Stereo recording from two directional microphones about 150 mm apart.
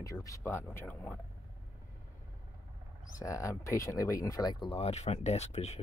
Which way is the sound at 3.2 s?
20° left (ahead or behind).